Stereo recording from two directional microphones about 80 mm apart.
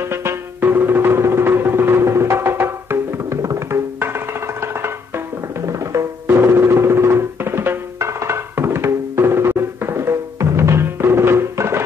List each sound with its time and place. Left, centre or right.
0.0 s music: right
6.2 s music: right